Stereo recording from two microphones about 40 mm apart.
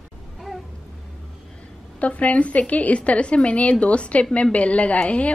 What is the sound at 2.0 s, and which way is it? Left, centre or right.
A woman's voice, left.